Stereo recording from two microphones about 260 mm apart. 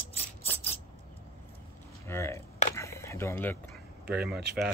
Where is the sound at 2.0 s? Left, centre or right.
Centre.